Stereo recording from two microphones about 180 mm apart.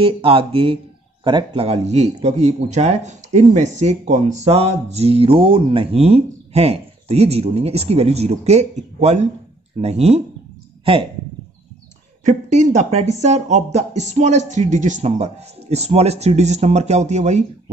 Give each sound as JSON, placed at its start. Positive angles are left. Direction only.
{"t": 0.0, "sound": "speech", "side_deg": -30}
{"t": 12.3, "sound": "speech", "side_deg": -40}